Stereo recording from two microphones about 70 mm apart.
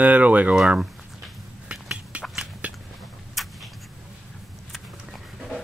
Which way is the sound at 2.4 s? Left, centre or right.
Centre.